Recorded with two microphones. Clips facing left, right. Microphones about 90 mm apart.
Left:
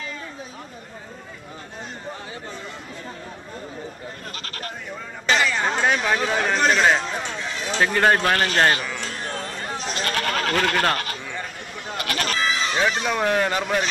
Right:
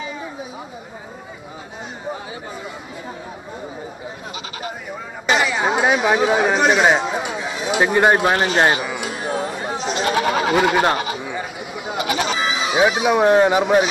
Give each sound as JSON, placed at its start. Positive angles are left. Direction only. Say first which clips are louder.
{"t": 0.0, "sound": "chatter", "louder": "right 5 dB", "side_deg": -10}
{"t": 4.4, "sound": "sheep", "louder": "right 7 dB", "side_deg": -5}
{"t": 5.2, "sound": "chatter", "louder": "right 3 dB", "side_deg": -10}
{"t": 13.2, "sound": "speech", "louder": "right 8 dB", "side_deg": -25}
{"t": 13.5, "sound": "speech", "louder": "right 8 dB", "side_deg": -10}